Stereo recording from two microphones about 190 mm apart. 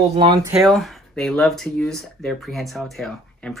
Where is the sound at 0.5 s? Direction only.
Centre (ahead or behind).